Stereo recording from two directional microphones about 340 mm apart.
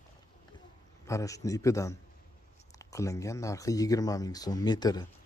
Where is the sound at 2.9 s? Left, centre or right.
Centre.